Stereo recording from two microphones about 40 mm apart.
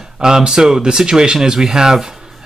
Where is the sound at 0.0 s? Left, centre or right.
Centre.